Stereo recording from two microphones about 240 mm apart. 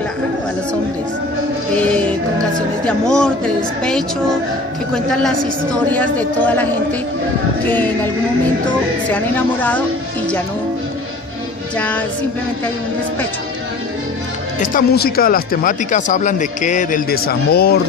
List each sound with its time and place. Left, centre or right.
1.8 s music: centre
2.8 s a woman's voice: centre
9.1 s a woman's voice: centre
14.6 s speech: left